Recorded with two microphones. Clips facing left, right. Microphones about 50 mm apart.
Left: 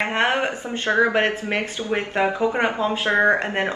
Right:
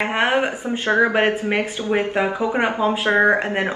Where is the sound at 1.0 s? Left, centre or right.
Centre.